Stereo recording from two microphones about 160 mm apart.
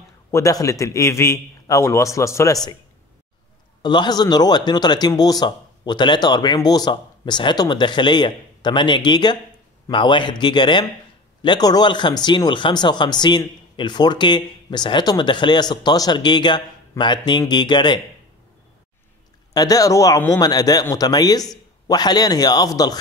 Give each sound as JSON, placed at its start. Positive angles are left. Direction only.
{"t": 0.3, "sound": "speech", "side_deg": 20}
{"t": 3.8, "sound": "speech", "side_deg": 30}
{"t": 19.5, "sound": "speech", "side_deg": 25}